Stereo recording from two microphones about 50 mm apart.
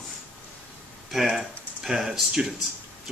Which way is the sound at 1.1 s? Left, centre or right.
Centre.